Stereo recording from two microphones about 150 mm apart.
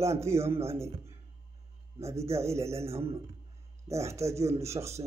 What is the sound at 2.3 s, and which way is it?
Speech, 20° right (ahead or behind).